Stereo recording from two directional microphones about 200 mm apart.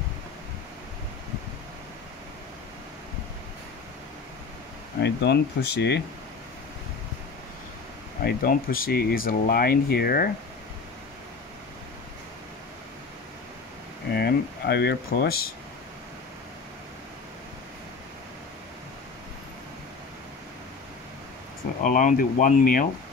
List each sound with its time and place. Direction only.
5.0 s speech: 55° left (ahead or behind)
8.2 s speech: 50° left (ahead or behind)
14.1 s speech: 55° left (ahead or behind)
21.8 s speech: 45° left (ahead or behind)